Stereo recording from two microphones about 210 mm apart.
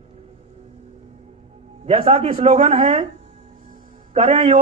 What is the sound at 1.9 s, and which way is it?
Speech, 30° right (ahead or behind).